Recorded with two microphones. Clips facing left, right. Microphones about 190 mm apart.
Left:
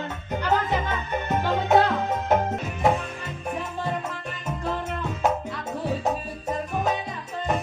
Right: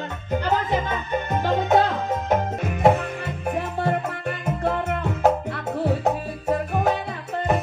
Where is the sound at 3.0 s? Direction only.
65° right (ahead or behind).